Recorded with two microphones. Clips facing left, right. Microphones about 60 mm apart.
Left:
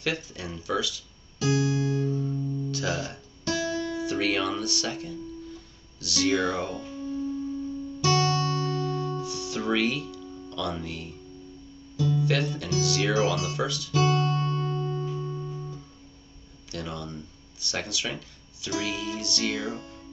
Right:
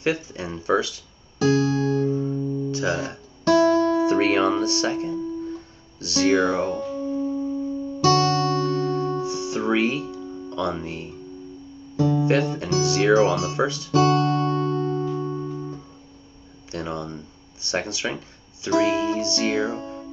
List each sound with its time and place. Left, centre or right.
0.0 s speech: right
2.0 s guitar: right
3.6 s music: right
8.0 s music: right
12.2 s speech: right
13.9 s music: right
16.7 s speech: right